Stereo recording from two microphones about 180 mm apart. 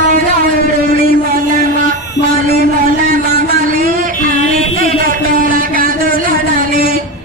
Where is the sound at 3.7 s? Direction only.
50° right (ahead or behind).